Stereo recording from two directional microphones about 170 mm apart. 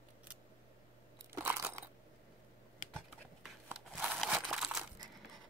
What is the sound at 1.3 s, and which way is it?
Crunch, 15° right (ahead or behind).